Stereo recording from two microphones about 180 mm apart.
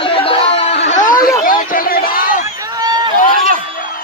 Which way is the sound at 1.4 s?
50° left (ahead or behind).